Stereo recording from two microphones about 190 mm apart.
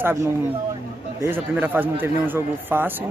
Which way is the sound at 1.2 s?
10° right (ahead or behind).